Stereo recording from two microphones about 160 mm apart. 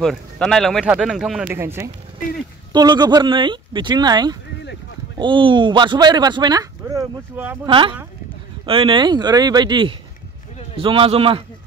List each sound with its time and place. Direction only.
0.0 s speech: 5° left (ahead or behind)
1.5 s speech: 15° right (ahead or behind)
2.7 s speech: 25° right (ahead or behind)
7.6 s a man's voice: 30° right (ahead or behind)